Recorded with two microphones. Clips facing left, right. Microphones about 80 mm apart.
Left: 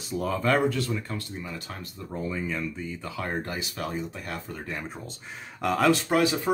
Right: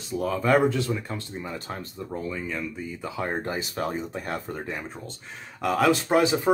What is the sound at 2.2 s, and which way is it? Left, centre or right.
Speech, centre.